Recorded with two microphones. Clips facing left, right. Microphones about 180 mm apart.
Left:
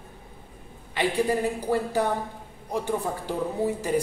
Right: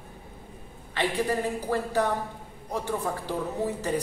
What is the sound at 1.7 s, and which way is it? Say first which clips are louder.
A man's voice: left 1 dB; 15° left (ahead or behind).